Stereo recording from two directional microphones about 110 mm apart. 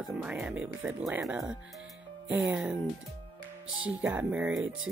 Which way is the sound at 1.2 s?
5° right (ahead or behind).